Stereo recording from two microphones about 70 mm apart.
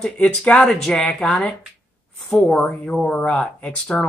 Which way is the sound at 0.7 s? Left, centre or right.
Centre.